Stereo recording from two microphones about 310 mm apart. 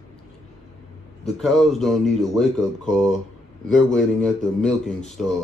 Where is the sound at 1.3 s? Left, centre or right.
Centre.